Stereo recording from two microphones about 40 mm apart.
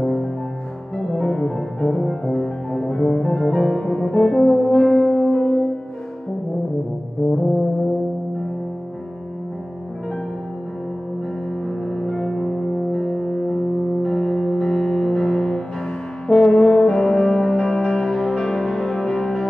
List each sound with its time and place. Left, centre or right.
0.0 s music: centre
7.2 s brass instrument: left
11.6 s music: centre